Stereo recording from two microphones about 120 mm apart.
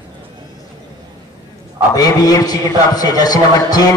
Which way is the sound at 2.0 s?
30° left (ahead or behind).